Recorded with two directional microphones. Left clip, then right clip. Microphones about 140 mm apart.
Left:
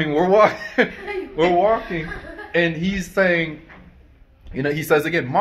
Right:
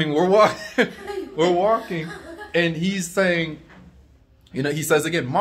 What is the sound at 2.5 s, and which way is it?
Speech, 25° right (ahead or behind).